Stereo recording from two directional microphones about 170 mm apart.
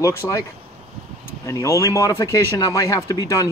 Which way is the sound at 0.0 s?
20° left (ahead or behind).